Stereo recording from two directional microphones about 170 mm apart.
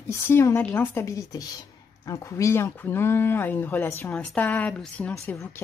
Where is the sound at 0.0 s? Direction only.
15° left (ahead or behind).